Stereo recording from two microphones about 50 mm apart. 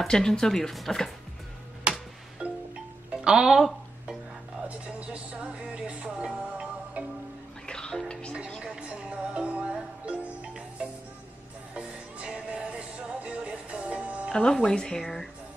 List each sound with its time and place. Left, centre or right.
0.0 s speech: centre
1.9 s music: centre
4.6 s music: right
7.6 s music: centre
8.6 s music: right
14.3 s speech: centre